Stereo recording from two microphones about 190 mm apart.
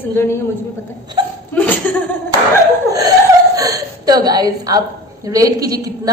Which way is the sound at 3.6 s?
20° right (ahead or behind).